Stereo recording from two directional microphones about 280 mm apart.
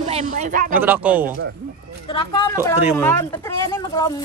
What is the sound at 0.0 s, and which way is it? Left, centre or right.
Speech, right.